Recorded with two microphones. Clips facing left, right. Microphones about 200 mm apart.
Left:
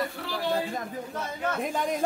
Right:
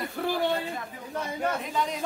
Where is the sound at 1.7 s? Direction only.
50° left (ahead or behind).